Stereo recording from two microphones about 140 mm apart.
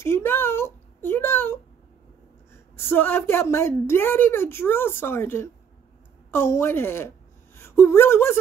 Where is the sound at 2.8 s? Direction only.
15° left (ahead or behind).